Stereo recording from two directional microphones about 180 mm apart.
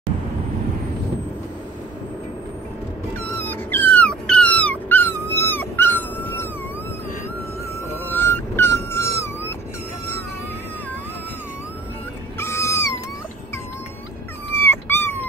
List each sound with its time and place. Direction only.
3.3 s dog: 10° left (ahead or behind)
7.9 s dog: 10° left (ahead or behind)
12.4 s cat: 15° left (ahead or behind)
14.5 s dog: 10° left (ahead or behind)